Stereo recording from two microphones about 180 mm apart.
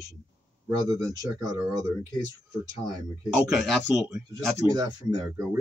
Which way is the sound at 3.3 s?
5° right (ahead or behind).